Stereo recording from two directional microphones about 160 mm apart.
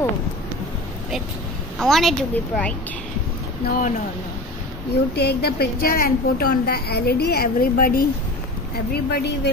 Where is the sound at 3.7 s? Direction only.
55° left (ahead or behind).